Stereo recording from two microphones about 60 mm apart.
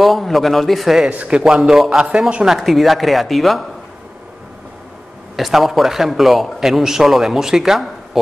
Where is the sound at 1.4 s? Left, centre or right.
Centre.